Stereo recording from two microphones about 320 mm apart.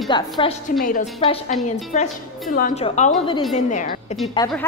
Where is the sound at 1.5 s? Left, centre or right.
Centre.